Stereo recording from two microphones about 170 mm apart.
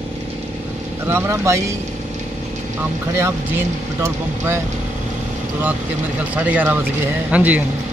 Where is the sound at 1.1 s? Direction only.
15° right (ahead or behind).